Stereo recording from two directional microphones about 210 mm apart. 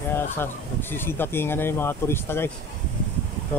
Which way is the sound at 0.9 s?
10° left (ahead or behind).